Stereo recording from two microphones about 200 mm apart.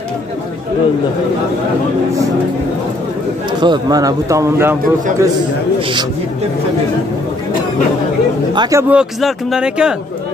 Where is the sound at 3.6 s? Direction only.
20° right (ahead or behind).